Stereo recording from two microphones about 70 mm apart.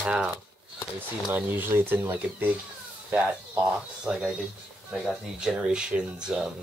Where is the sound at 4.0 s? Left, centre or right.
Centre.